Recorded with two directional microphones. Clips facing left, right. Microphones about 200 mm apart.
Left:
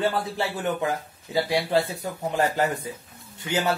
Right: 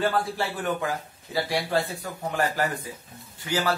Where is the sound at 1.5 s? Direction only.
20° left (ahead or behind).